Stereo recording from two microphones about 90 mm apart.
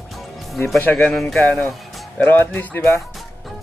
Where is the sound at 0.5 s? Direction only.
Centre (ahead or behind).